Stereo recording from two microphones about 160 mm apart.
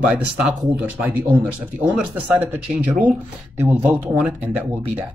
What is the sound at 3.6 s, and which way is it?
Speech, 15° right (ahead or behind).